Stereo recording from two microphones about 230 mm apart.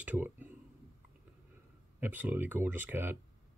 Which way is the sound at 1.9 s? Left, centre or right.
Centre.